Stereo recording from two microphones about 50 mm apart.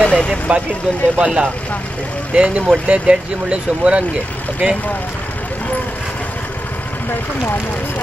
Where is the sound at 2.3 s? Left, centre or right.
Right.